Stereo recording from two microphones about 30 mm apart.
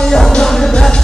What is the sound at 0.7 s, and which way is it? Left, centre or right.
Music, left.